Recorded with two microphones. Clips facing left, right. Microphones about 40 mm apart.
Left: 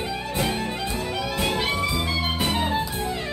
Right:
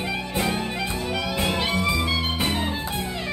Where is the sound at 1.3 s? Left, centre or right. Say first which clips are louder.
Left 1 dB; right.